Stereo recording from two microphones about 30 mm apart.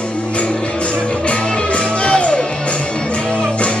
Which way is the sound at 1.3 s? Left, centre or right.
Left.